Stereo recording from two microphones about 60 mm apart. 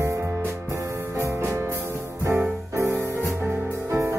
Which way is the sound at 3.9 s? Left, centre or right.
Right.